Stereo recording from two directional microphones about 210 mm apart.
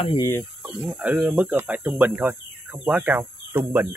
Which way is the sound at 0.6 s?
Centre (ahead or behind).